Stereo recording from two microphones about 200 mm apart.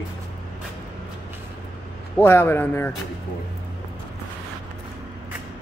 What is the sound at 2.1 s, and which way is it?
Speech, 10° left (ahead or behind).